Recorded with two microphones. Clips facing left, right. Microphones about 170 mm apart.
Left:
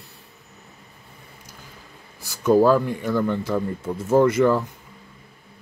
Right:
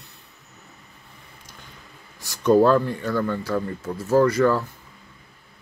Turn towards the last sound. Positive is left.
turn(degrees=20)  # may be behind; listen again after turning